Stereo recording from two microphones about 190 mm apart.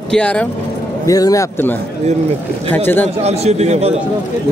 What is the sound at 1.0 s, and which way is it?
A man's voice, 20° left (ahead or behind).